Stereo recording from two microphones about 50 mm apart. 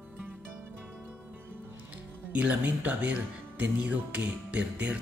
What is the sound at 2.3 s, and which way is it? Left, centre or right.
Speech, right.